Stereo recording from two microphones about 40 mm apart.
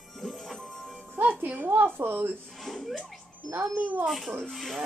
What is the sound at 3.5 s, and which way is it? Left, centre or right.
Speech, right.